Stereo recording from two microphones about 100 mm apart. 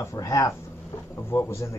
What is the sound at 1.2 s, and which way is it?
Speech, 25° left (ahead or behind).